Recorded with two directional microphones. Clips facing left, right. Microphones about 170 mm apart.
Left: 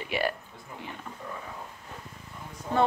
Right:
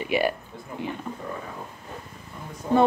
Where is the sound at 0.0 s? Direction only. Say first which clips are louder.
Right 6 dB; 15° right (ahead or behind).